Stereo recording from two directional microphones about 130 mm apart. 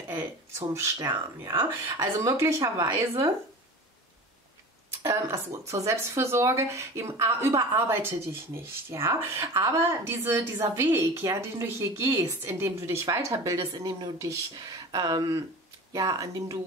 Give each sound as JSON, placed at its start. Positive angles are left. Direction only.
{"t": 0.1, "sound": "speech", "side_deg": -20}
{"t": 0.9, "sound": "speech", "side_deg": -35}
{"t": 2.0, "sound": "a woman's voice", "side_deg": -20}
{"t": 5.0, "sound": "a woman's voice", "side_deg": -25}